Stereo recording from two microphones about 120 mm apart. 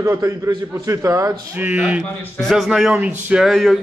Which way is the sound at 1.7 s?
10° right (ahead or behind).